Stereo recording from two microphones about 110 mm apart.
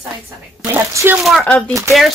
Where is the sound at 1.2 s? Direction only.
Centre (ahead or behind).